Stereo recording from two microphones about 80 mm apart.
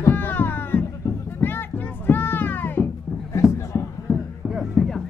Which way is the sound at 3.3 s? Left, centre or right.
Left.